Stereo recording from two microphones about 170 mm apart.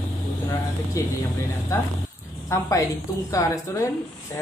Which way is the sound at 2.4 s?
15° left (ahead or behind).